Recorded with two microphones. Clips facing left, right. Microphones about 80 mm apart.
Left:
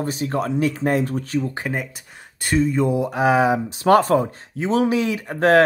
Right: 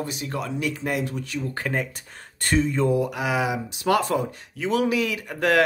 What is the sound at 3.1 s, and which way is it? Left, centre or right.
Speech, left.